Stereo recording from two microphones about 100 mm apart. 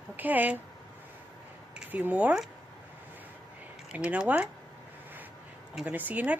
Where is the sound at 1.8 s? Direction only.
15° right (ahead or behind).